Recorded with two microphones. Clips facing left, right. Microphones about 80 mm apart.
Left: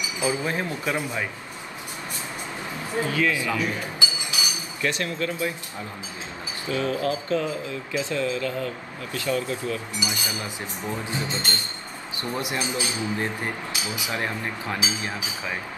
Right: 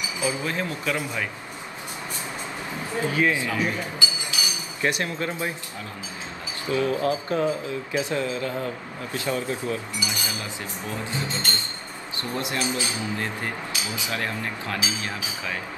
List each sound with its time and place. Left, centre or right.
0.2 s speech: left
3.1 s speech: right
4.8 s speech: right
6.7 s speech: right
10.8 s speech: left